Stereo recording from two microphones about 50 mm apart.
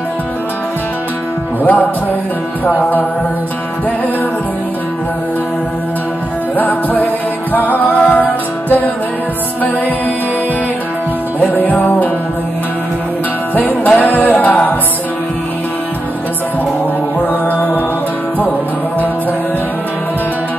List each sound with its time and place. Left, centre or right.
1.6 s music: left
6.5 s music: left
11.3 s music: left
13.6 s music: left
17.3 s music: left